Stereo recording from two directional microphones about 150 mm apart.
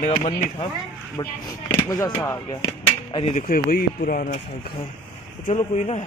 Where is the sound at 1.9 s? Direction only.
20° left (ahead or behind).